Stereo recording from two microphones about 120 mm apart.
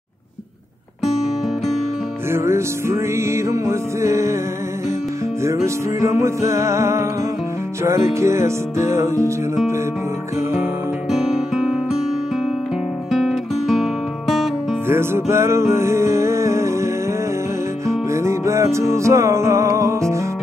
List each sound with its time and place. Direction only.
2.3 s music: 20° right (ahead or behind)
5.4 s music: 25° right (ahead or behind)
11.1 s music: 5° right (ahead or behind)
13.1 s music: centre (ahead or behind)
14.9 s music: 20° right (ahead or behind)